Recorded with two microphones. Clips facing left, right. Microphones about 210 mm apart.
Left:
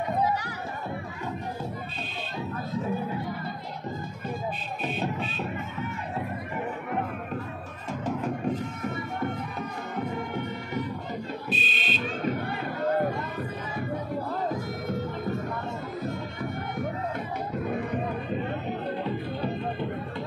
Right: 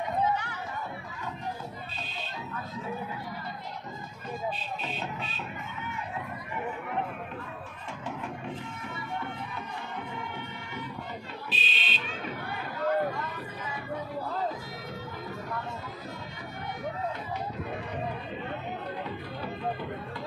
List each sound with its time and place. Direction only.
0.2 s a sound: 35° left (ahead or behind)
8.0 s music: 40° left (ahead or behind)
11.5 s fire alarm: 50° left (ahead or behind)
14.5 s music: 50° left (ahead or behind)
19.0 s music: 25° left (ahead or behind)